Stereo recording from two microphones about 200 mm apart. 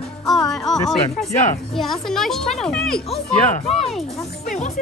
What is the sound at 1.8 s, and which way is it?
A woman's voice, centre (ahead or behind).